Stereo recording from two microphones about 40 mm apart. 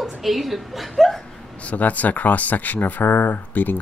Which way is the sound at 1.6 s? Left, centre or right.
Left.